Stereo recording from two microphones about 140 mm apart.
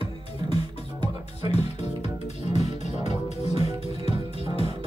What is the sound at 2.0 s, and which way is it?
Music, 50° left (ahead or behind).